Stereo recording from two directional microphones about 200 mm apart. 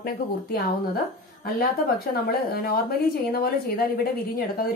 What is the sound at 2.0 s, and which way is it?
A woman's voice, 50° left (ahead or behind).